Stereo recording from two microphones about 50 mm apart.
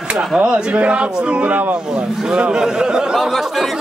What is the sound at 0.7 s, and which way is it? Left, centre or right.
A man's voice, right.